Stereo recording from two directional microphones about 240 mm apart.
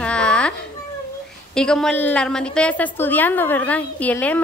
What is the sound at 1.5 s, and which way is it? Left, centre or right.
A woman's voice, centre.